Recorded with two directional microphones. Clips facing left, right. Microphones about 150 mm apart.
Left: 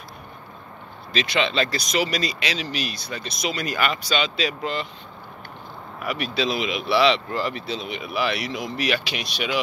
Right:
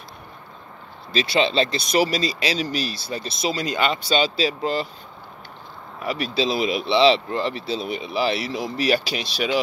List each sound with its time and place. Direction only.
1.1 s speech: 30° right (ahead or behind)
6.0 s speech: 35° right (ahead or behind)